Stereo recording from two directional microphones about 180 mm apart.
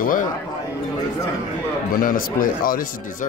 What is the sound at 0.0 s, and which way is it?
Speech, 50° left (ahead or behind).